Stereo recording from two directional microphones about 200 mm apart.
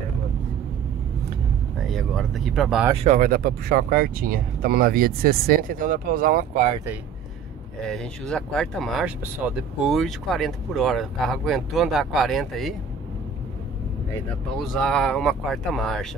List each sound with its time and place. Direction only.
1.8 s speech: centre (ahead or behind)
2.9 s speech: 30° right (ahead or behind)
3.2 s speech: 45° right (ahead or behind)
7.8 s speech: 5° left (ahead or behind)
14.6 s speech: centre (ahead or behind)